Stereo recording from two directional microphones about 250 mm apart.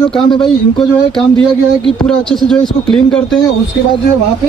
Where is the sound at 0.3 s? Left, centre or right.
Centre.